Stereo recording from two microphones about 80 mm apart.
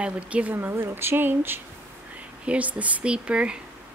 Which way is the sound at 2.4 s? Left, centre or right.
Centre.